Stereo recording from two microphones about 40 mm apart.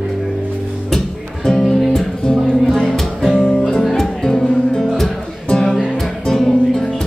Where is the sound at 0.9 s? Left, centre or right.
Centre.